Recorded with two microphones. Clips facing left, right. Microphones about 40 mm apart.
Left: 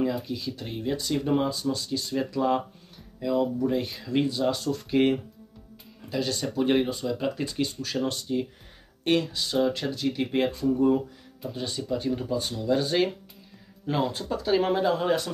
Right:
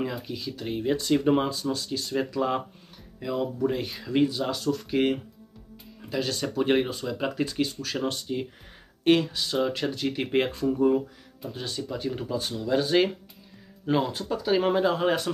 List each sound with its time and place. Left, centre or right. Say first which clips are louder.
0.1 s speech: left 3 dB; centre
1.2 s speech: left 1 dB; right
1.5 s speech: left 1 dB; centre
7.6 s speech: even; centre
8.0 s speech: left 2 dB; centre
10.5 s speech: even; centre